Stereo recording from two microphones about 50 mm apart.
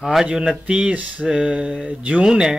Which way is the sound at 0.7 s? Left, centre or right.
Right.